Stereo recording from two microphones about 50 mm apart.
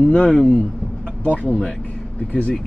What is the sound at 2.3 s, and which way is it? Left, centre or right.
Speech, left.